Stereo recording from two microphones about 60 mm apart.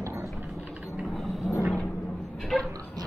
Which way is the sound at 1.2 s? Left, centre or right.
Centre.